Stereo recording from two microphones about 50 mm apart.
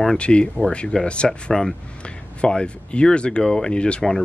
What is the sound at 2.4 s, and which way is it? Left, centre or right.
Speech, left.